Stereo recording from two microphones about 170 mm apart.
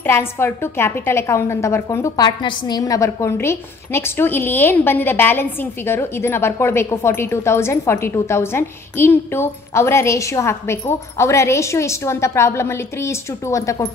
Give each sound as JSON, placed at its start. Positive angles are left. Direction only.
{"t": 0.0, "sound": "a woman's voice", "side_deg": 15}